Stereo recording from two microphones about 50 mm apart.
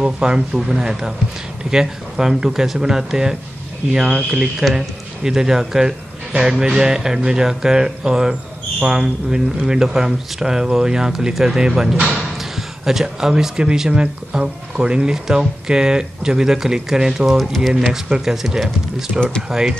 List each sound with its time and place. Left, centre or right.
0.0 s speech: centre
19.1 s speech: centre